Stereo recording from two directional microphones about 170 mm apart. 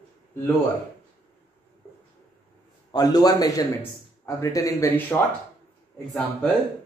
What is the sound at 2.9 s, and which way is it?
A man's voice, 20° left (ahead or behind).